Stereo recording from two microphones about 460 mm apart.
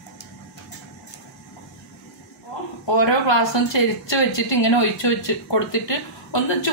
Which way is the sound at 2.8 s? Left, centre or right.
Left.